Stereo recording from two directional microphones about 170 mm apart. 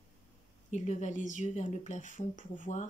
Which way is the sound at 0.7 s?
45° left (ahead or behind).